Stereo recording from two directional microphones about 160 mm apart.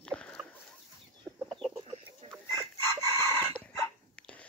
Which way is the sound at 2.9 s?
15° left (ahead or behind).